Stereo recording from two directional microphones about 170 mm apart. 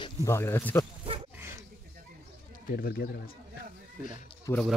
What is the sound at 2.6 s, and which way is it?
Speech, 65° left (ahead or behind).